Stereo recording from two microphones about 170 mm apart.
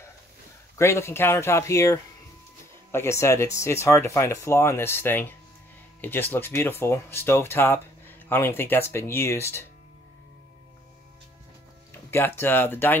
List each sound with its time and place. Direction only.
0.7 s speech: 15° left (ahead or behind)
12.1 s speech: 15° left (ahead or behind)